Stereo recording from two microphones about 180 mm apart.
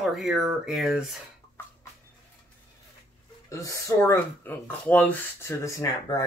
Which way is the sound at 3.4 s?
20° left (ahead or behind).